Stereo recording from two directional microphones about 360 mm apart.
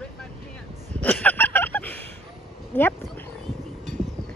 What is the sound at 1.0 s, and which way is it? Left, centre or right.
Fowl, centre.